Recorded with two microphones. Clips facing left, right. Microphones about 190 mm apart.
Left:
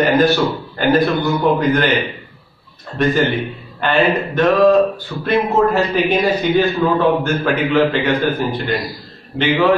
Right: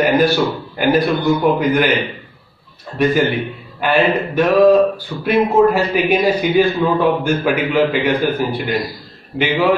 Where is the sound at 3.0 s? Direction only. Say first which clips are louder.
Right 1 dB; 10° right (ahead or behind).